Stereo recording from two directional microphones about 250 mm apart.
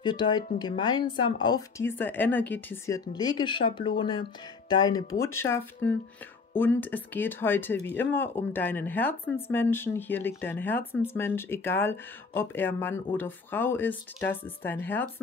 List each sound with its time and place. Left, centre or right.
0.0 s a woman's voice: centre